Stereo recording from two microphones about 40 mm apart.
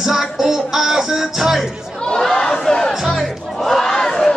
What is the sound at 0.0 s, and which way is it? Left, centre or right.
Music, centre.